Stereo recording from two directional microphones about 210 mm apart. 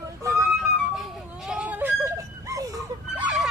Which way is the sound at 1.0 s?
5° right (ahead or behind).